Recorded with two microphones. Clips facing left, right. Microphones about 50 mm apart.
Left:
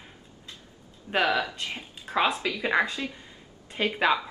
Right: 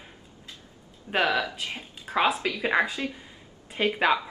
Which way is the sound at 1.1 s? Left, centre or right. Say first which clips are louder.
Even; centre.